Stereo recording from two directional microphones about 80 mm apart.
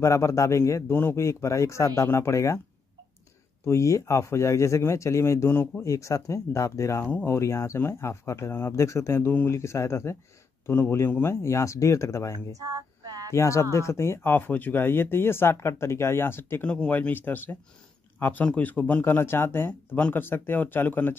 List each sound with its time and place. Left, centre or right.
0.0 s speech: left
3.6 s speech: left
5.9 s speech: left
12.5 s female singing: right
13.3 s speech: left
16.6 s speech: centre